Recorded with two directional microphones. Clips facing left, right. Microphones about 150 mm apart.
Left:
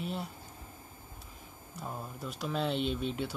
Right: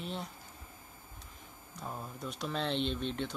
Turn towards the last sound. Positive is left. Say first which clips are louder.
# left 2 dB
turn(degrees=5)  # may be behind; listen again after turning